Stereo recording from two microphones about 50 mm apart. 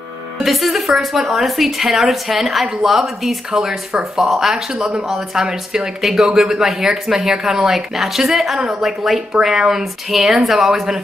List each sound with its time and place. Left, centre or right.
0.4 s a woman's voice: centre